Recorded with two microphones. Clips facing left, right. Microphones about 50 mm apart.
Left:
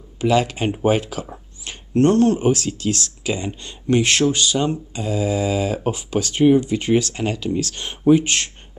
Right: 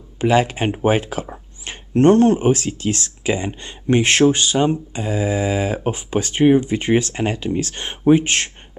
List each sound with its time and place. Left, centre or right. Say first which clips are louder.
0.2 s speech: right 2 dB; right